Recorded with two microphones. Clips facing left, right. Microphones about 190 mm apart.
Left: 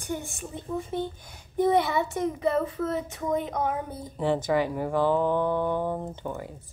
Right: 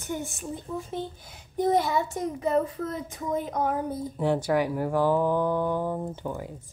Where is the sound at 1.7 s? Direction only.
65° left (ahead or behind).